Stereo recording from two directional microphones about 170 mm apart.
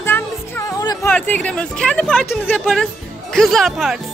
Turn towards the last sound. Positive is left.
turn(degrees=0)  # may be behind; listen again after turning